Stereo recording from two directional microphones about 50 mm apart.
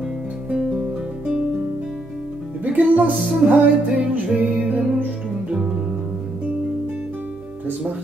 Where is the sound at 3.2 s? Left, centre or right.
Centre.